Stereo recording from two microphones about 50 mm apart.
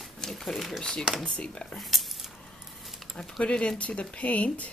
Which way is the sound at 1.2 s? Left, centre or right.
Centre.